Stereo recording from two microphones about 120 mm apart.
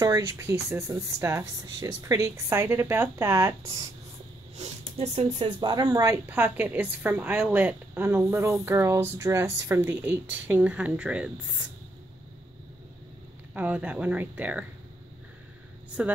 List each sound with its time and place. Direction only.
0.4 s speech: 25° right (ahead or behind)
4.6 s speech: 65° right (ahead or behind)
5.6 s a woman's voice: 35° right (ahead or behind); by 11.6 s 10° right (ahead or behind)
13.6 s a woman's voice: 10° right (ahead or behind)